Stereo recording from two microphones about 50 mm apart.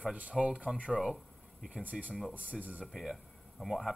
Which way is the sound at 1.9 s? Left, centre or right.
Centre.